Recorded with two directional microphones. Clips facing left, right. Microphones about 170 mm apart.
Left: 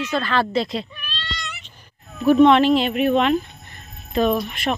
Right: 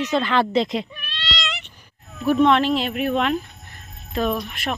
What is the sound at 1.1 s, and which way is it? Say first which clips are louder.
Child singing: right 3 dB; 80° right.